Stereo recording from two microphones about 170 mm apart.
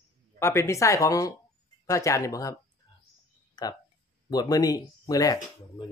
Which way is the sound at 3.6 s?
25° left (ahead or behind).